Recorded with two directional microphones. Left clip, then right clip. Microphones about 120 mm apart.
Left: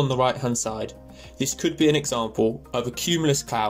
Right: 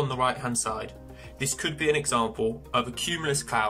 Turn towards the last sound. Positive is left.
turn(degrees=35)  # may be behind; listen again after turning